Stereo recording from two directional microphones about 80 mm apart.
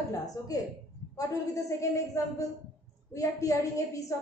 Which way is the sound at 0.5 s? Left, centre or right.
Left.